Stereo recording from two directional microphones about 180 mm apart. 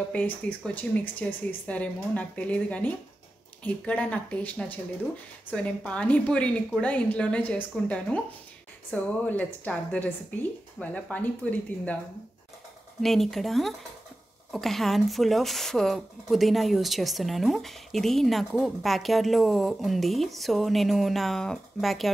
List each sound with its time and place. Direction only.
0.1 s a woman's voice: 10° left (ahead or behind)
13.0 s speech: centre (ahead or behind)